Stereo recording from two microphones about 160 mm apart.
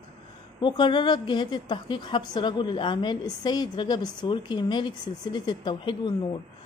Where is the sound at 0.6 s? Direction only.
30° left (ahead or behind).